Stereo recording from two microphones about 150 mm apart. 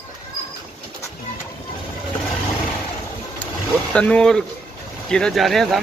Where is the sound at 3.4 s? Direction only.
10° left (ahead or behind).